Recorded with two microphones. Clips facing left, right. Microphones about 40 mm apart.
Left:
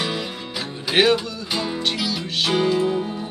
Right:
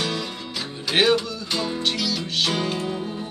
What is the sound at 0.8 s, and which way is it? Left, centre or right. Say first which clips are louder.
Speech: left 2 dB; centre.